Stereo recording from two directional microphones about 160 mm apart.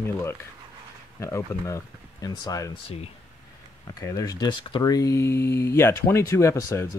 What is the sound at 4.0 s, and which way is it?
Speech, 20° left (ahead or behind).